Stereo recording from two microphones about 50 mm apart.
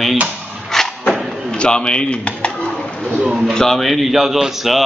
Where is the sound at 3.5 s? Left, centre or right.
Centre.